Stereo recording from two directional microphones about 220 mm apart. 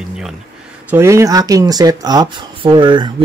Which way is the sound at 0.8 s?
10° right (ahead or behind).